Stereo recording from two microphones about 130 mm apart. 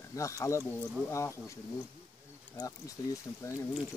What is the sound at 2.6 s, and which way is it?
Speech, 25° left (ahead or behind).